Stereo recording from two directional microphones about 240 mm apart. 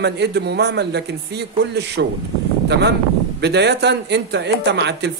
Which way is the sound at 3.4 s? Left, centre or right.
Right.